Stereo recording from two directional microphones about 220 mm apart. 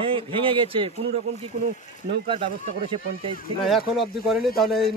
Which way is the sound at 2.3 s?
25° right (ahead or behind).